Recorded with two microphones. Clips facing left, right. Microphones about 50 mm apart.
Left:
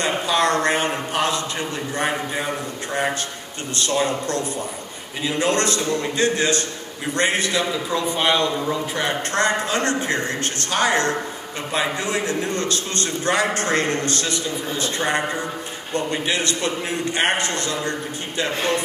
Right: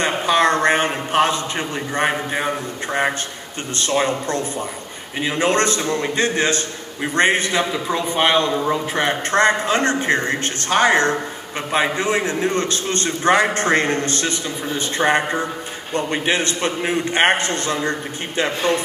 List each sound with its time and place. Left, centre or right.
0.0 s a man's voice: right